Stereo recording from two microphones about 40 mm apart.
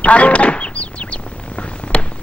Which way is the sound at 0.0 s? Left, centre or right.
Left.